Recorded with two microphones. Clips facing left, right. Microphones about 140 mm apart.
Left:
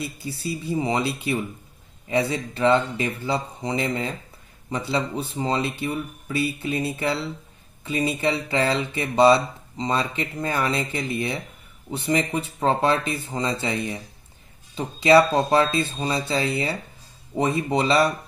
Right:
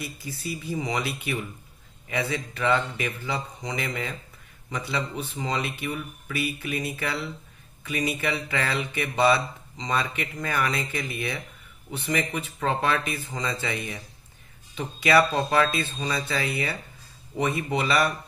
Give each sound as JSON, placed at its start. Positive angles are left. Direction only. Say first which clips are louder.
{"t": 0.0, "sound": "speech", "louder": "left 4 dB", "side_deg": 30}